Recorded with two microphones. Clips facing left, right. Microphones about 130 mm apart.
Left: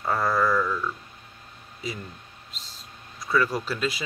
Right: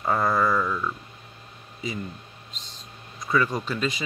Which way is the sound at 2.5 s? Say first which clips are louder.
Left 1 dB; 5° left (ahead or behind).